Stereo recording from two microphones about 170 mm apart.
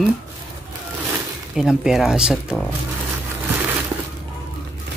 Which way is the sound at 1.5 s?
5° right (ahead or behind).